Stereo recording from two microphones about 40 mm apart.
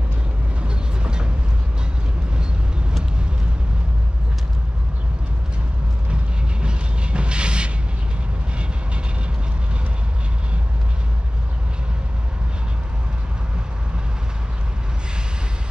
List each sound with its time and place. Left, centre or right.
0.6 s vehicle: right
6.6 s vehicle: right